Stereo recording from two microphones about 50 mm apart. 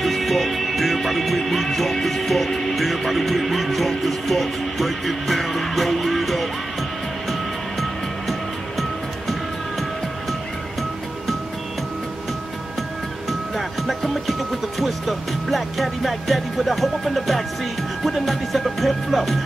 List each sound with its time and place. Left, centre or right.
0.0 s music: centre
7.8 s music: centre
13.6 s music: centre
14.8 s speech: centre
18.0 s music: centre